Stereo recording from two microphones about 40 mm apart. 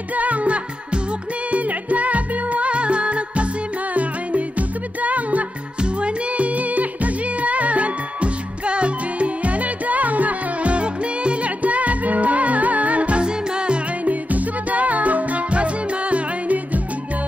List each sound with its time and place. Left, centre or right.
0.1 s music: right
5.8 s music: right
14.0 s music: right